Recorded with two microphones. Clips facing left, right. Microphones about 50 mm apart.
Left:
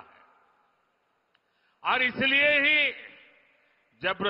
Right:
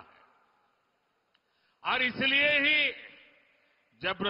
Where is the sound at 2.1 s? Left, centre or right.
Centre.